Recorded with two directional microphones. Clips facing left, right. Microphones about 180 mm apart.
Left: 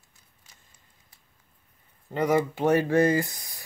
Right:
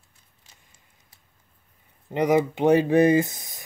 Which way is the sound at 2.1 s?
15° right (ahead or behind).